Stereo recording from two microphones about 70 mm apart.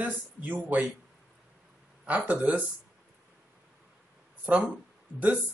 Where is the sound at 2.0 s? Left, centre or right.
Right.